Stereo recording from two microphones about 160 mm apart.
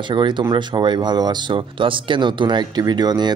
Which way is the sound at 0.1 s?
30° right (ahead or behind).